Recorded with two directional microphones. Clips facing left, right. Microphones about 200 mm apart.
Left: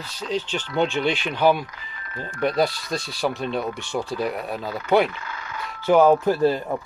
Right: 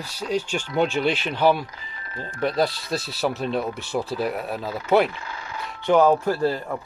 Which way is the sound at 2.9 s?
5° right (ahead or behind).